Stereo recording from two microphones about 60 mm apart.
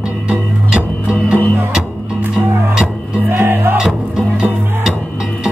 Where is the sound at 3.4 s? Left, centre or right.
Right.